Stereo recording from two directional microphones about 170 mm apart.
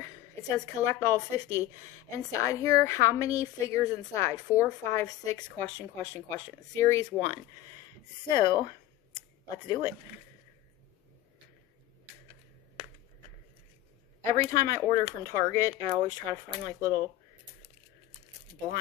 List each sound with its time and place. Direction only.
0.0 s speech: 20° left (ahead or behind)
8.3 s a sound: 25° left (ahead or behind)
9.7 s speech: 20° left (ahead or behind)
14.2 s speech: 20° left (ahead or behind)